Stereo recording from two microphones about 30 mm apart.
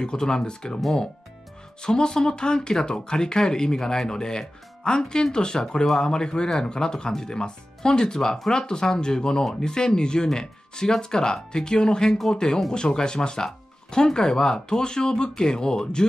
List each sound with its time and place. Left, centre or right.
0.0 s speech: left
1.8 s speech: left